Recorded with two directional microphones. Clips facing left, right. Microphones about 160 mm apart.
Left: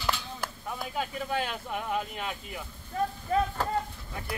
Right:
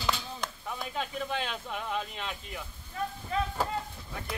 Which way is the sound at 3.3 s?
45° left (ahead or behind).